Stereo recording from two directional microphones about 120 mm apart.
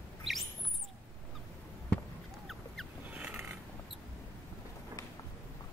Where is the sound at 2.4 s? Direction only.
Centre (ahead or behind).